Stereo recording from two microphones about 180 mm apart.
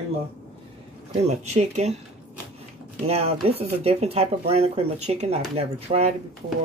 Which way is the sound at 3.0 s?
35° right (ahead or behind).